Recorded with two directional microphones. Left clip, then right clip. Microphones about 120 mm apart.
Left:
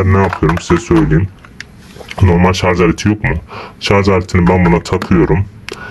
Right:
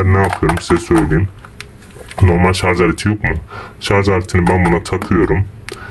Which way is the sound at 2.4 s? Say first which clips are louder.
Left 2 dB; 20° left (ahead or behind).